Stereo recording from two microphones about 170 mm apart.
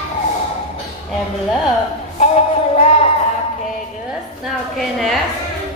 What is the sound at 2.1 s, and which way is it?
Music, 40° left (ahead or behind).